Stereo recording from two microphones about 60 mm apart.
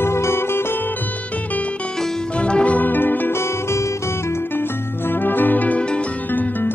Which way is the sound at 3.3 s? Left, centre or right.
Left.